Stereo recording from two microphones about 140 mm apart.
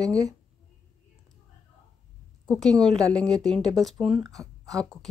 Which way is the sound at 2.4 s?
5° left (ahead or behind).